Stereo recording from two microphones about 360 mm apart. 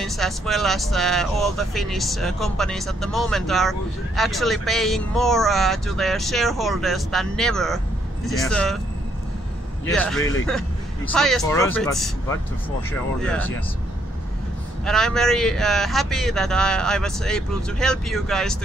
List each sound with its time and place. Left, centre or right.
0.0 s speech: centre
9.9 s speech: centre
14.9 s speech: centre